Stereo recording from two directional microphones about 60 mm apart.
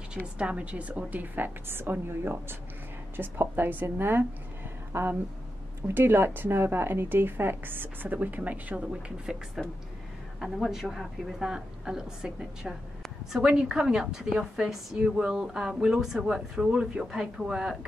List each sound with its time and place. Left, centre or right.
0.1 s a woman's voice: centre
9.6 s a woman's voice: centre